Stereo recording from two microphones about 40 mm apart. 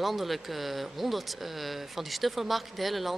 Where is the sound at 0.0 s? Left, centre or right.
Centre.